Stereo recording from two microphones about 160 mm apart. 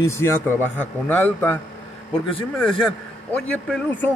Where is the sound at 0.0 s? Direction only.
15° left (ahead or behind).